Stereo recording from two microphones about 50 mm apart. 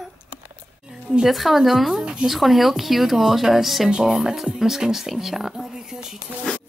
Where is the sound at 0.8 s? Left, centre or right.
Centre.